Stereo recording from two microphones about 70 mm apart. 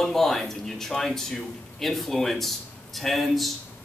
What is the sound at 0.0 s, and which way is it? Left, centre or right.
A man's voice, centre.